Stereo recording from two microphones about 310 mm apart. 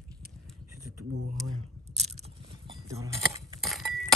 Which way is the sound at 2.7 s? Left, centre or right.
Centre.